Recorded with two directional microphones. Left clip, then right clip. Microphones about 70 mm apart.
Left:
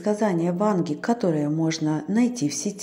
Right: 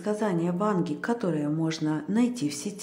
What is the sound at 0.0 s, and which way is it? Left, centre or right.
A woman's voice, left.